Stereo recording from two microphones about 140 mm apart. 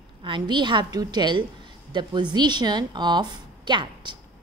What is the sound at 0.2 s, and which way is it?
A woman's voice, 35° right (ahead or behind).